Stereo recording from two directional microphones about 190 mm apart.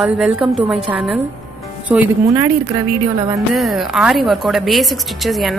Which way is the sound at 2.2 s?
15° right (ahead or behind).